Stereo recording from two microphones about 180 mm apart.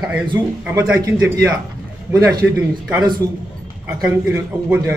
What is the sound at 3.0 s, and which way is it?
Speech, 20° right (ahead or behind).